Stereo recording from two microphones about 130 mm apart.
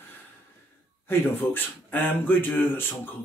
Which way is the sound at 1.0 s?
15° left (ahead or behind).